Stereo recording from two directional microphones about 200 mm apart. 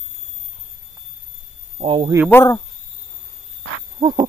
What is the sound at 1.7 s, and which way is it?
Speech, 25° right (ahead or behind).